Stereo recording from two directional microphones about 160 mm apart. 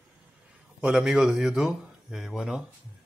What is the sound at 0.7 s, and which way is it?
Speech, 5° right (ahead or behind).